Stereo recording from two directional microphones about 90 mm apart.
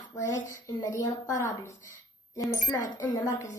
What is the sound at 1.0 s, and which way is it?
A woman's voice, 40° left (ahead or behind).